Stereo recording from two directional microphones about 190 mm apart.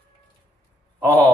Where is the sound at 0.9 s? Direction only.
15° right (ahead or behind).